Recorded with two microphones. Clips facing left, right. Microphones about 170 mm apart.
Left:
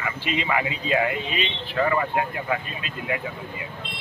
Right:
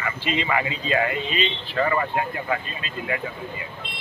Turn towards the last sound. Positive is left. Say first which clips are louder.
# even
turn(degrees=10)  # may be behind; listen again after turning